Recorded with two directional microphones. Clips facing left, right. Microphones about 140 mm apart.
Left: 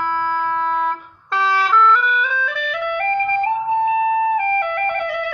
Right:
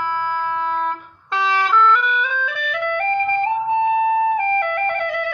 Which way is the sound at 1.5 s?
20° right (ahead or behind).